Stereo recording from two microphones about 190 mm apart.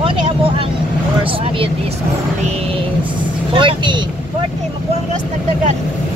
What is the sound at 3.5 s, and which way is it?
Speech, 25° right (ahead or behind).